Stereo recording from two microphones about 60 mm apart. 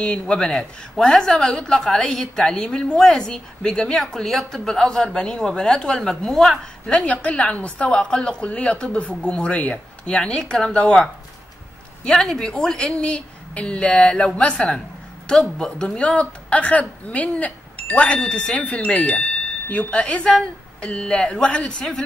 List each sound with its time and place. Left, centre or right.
0.0 s speech: centre
6.9 s a woman's voice: centre
12.0 s a woman's voice: centre